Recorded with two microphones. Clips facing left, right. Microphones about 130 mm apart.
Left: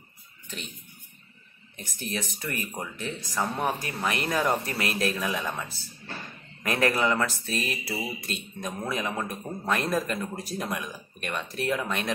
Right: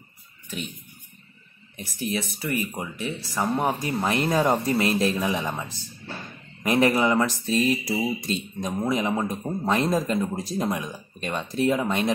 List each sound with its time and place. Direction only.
2.0 s a man's voice: 10° right (ahead or behind)